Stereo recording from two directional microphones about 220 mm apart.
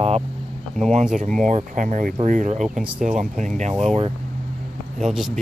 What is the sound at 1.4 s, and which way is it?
Speech, 35° right (ahead or behind).